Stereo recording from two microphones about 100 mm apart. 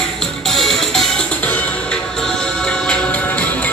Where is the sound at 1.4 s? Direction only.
15° left (ahead or behind).